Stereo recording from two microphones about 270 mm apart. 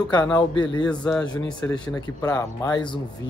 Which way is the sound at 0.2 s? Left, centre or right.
Centre.